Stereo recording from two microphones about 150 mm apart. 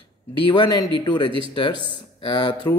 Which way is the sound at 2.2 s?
30° left (ahead or behind).